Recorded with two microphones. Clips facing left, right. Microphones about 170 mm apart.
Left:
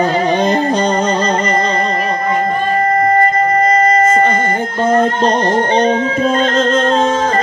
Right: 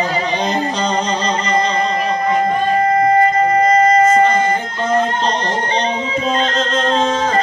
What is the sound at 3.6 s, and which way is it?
Music, 50° left (ahead or behind).